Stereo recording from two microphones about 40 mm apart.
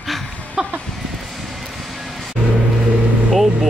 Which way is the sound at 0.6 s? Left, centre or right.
Centre.